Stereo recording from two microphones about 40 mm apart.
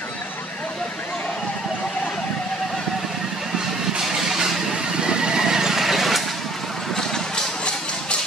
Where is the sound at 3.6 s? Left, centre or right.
Centre.